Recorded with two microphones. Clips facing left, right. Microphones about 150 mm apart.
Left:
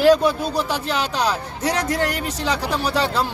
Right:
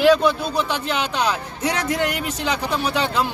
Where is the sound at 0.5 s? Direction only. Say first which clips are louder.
Even; 40° left (ahead or behind).